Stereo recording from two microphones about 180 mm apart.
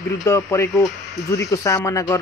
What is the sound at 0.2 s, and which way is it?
Speech, 15° left (ahead or behind).